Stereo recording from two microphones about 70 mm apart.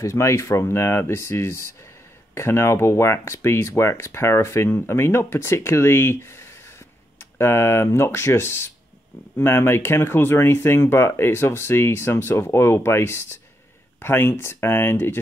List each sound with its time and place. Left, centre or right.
0.0 s speech: left